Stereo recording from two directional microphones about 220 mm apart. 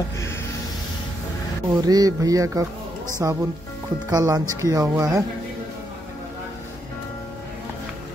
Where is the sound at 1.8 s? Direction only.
15° right (ahead or behind).